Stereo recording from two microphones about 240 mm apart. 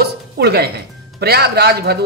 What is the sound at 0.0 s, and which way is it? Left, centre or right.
Speech, right.